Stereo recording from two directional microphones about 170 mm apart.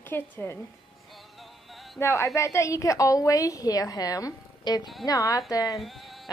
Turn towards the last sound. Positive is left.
turn(degrees=0)  # may be behind; listen again after turning